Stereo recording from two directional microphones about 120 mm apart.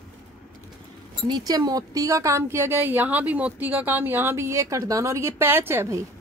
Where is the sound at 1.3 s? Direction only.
35° right (ahead or behind).